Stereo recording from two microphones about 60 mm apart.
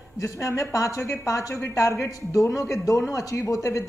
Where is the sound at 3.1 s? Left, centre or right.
Left.